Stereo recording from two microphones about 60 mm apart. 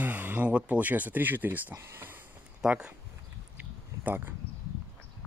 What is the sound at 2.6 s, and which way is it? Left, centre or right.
Speech, centre.